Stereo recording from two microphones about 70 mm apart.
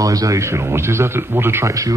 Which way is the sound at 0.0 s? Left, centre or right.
Right.